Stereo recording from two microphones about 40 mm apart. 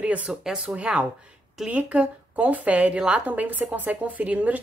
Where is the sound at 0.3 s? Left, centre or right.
Right.